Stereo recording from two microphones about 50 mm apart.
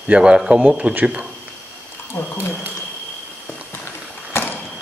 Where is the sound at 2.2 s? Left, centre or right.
Left.